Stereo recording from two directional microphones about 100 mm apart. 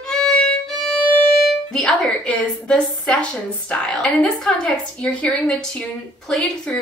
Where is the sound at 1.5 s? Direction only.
5° left (ahead or behind).